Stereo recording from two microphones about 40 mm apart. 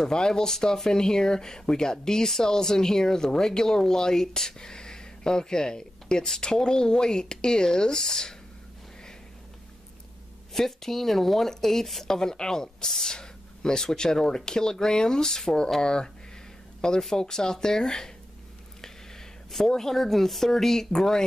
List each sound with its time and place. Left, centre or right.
0.0 s speech: centre
10.5 s speech: centre
17.1 s speech: centre
19.5 s speech: centre